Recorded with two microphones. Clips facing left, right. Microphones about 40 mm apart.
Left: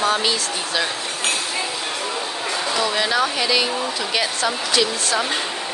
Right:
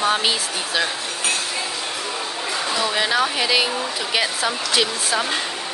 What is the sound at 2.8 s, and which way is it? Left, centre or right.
Speech, centre.